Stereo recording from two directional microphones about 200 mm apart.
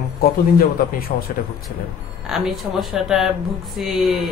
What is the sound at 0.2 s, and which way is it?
Speech, 50° left (ahead or behind).